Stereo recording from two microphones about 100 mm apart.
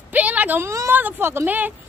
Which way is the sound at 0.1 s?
15° right (ahead or behind).